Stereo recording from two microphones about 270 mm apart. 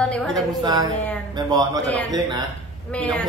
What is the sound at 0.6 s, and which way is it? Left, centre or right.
Speech, centre.